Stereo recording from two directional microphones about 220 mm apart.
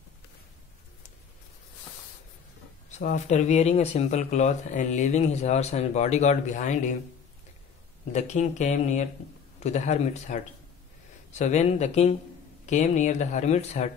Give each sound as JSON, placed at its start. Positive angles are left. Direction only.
{"t": 3.0, "sound": "speech", "side_deg": 35}
{"t": 8.1, "sound": "speech", "side_deg": 30}